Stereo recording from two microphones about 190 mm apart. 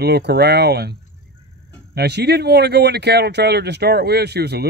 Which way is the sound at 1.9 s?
60° right (ahead or behind).